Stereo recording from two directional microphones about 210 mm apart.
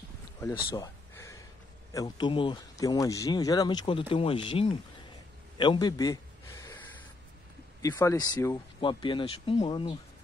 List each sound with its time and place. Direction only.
0.7 s a sound: 15° left (ahead or behind)
1.9 s speech: 20° left (ahead or behind)
7.8 s speech: 15° left (ahead or behind)